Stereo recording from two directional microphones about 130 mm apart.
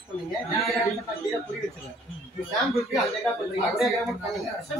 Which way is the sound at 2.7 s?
Centre (ahead or behind).